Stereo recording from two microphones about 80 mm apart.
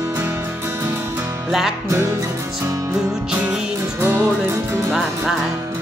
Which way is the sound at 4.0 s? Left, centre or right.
Right.